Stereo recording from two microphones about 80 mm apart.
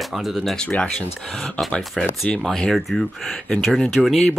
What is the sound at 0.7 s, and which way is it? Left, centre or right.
Speech, centre.